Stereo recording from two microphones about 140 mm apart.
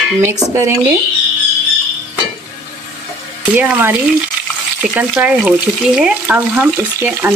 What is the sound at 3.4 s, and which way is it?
Speech, 10° right (ahead or behind).